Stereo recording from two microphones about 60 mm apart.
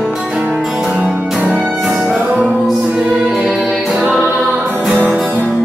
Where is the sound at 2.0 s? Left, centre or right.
Right.